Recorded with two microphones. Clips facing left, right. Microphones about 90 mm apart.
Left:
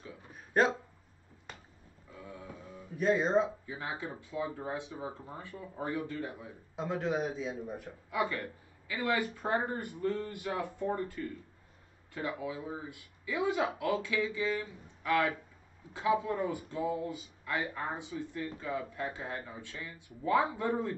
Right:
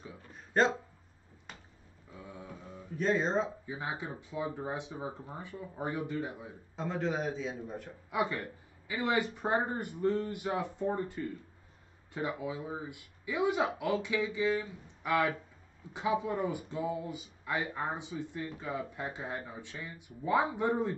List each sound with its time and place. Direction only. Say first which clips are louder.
0.3 s a sound: even; 10° left (ahead or behind)
3.0 s speech: left 2 dB; 5° left (ahead or behind)
3.6 s speech: right 1 dB; 20° right (ahead or behind)
6.8 s a man's voice: left 1 dB; 5° left (ahead or behind)
8.1 s speech: even; 20° right (ahead or behind)